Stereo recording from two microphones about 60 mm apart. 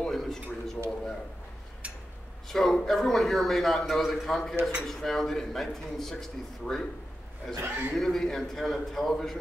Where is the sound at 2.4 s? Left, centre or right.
Centre.